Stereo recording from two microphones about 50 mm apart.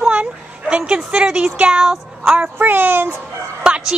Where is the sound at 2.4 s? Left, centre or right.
Right.